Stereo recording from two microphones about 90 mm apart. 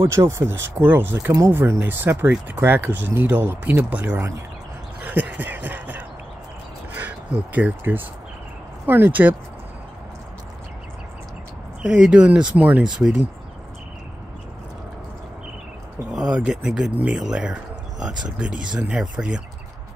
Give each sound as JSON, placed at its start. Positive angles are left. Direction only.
{"t": 0.0, "sound": "speech", "side_deg": -30}
{"t": 5.0, "sound": "a sound", "side_deg": -20}
{"t": 6.9, "sound": "speech", "side_deg": -15}
{"t": 11.8, "sound": "speech", "side_deg": -10}
{"t": 16.1, "sound": "speech", "side_deg": -5}